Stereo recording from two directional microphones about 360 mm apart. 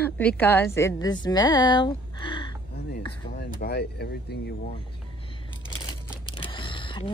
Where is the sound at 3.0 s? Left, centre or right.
Left.